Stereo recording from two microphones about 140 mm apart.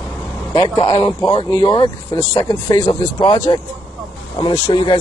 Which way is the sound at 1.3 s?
30° left (ahead or behind).